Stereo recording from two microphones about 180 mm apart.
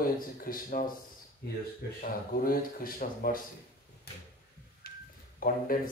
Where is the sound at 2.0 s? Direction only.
55° left (ahead or behind).